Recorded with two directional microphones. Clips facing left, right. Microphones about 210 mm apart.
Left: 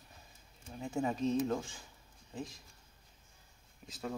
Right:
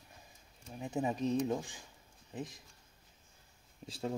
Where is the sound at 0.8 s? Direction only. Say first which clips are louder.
Even; 20° right (ahead or behind).